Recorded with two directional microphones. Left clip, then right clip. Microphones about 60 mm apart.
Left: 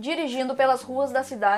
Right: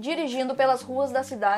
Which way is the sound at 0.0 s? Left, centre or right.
Right.